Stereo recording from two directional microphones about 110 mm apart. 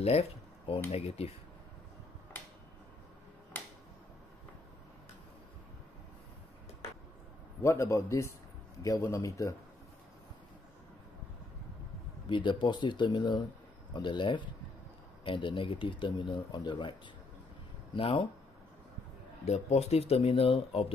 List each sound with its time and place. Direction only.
0.0 s a sound: 65° left (ahead or behind)
0.9 s speech: 65° left (ahead or behind)
7.6 s a man's voice: 25° left (ahead or behind)
12.3 s speech: 45° left (ahead or behind)
17.9 s speech: 55° left (ahead or behind)
19.4 s speech: 75° left (ahead or behind); by 20.8 s 60° left (ahead or behind)